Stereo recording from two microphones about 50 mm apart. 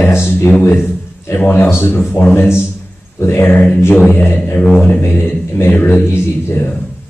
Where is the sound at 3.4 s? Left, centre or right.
Left.